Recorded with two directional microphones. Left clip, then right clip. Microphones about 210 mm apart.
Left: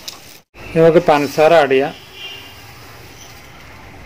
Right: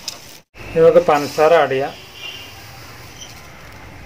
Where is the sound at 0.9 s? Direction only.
45° left (ahead or behind).